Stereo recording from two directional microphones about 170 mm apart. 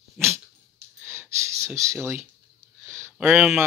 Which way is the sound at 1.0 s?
15° right (ahead or behind).